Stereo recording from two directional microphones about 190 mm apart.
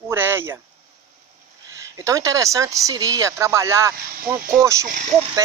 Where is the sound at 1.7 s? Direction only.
15° right (ahead or behind).